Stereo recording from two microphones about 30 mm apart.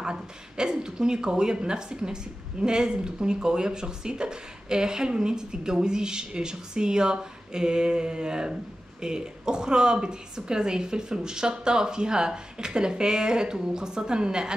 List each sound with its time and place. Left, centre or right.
0.0 s speech: right